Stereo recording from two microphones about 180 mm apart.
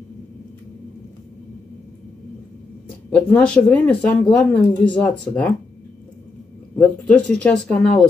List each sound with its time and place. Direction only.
3.1 s speech: 5° left (ahead or behind)
6.8 s speech: 5° left (ahead or behind)